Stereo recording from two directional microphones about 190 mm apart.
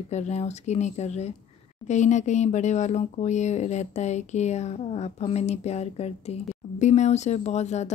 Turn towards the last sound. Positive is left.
turn(degrees=35)  # may be behind; listen again after turning